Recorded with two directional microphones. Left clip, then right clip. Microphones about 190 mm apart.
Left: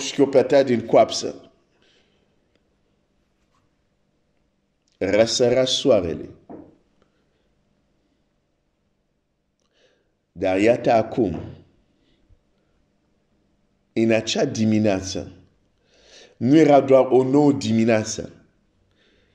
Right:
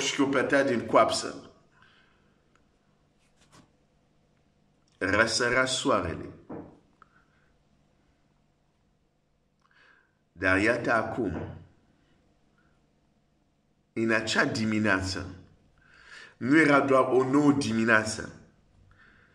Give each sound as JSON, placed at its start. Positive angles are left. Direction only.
{"t": 0.0, "sound": "speech", "side_deg": 25}
{"t": 1.8, "sound": "a sound", "side_deg": 20}
{"t": 4.9, "sound": "a man's voice", "side_deg": 15}
{"t": 9.8, "sound": "a man's voice", "side_deg": 15}
{"t": 13.9, "sound": "a man's voice", "side_deg": 15}
{"t": 18.9, "sound": "a sound", "side_deg": 20}